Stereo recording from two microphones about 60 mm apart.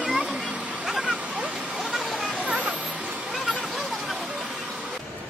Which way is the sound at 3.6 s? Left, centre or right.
Centre.